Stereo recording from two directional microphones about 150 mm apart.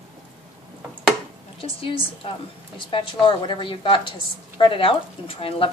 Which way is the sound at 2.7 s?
35° left (ahead or behind).